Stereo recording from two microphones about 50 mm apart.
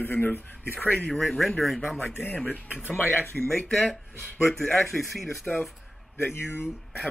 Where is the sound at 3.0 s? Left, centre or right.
Left.